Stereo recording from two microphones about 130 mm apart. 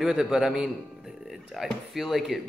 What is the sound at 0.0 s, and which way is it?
Speech, 5° right (ahead or behind).